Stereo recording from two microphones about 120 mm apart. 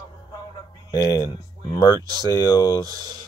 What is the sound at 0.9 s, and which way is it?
Speech, 35° left (ahead or behind).